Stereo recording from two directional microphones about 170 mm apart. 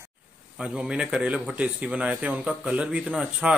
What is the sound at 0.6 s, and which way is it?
Speech, 5° right (ahead or behind).